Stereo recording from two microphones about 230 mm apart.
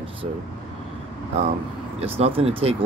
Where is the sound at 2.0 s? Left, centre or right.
Right.